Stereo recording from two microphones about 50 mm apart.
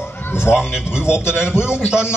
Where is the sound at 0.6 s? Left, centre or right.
Centre.